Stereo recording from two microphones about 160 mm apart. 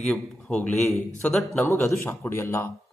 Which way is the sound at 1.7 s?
15° left (ahead or behind).